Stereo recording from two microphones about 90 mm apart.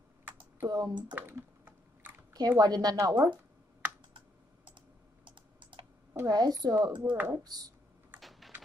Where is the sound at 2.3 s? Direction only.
50° right (ahead or behind).